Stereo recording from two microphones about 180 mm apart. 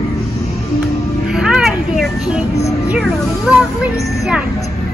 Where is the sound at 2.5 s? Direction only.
15° left (ahead or behind).